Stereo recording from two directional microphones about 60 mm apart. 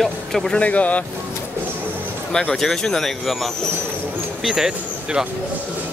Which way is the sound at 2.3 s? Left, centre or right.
Centre.